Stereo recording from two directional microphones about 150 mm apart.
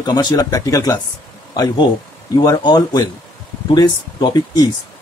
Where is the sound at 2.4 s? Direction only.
30° left (ahead or behind).